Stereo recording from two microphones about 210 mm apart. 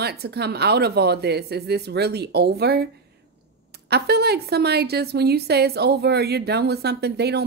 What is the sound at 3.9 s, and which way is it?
A woman's voice, 50° right (ahead or behind).